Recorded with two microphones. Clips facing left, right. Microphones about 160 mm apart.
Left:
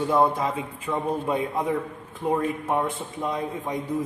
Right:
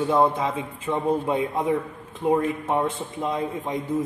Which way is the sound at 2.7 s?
25° right (ahead or behind).